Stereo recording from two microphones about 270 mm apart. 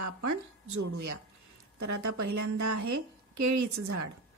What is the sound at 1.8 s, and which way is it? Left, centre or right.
Speech, right.